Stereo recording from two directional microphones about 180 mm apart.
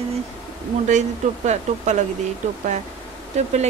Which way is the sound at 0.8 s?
40° right (ahead or behind).